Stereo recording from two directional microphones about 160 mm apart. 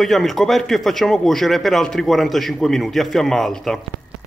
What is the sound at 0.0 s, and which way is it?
Speech, centre (ahead or behind).